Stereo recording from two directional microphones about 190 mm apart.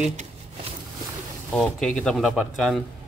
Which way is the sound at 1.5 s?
Centre (ahead or behind).